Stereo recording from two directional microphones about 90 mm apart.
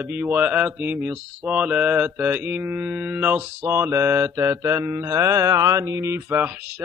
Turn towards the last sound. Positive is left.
turn(degrees=-20)  # may be behind; listen again after turning